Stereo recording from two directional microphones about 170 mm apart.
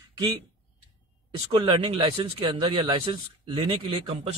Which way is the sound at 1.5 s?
30° right (ahead or behind).